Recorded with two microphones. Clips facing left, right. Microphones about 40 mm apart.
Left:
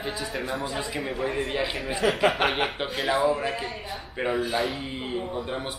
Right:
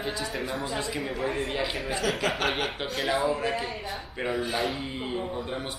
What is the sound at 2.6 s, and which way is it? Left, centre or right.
A woman's voice, centre.